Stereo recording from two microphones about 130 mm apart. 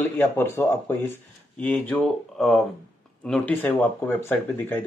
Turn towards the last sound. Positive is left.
turn(degrees=15)  # may be behind; listen again after turning